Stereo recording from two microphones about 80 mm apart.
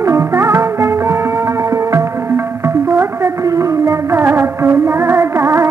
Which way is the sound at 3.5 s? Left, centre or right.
Right.